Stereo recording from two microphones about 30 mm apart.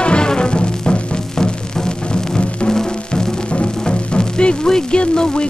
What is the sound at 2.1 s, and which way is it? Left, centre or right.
Music, left.